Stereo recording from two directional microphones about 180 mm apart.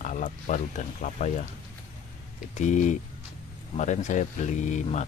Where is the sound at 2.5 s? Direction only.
40° left (ahead or behind).